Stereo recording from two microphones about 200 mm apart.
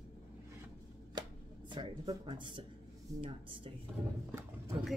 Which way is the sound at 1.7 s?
20° right (ahead or behind).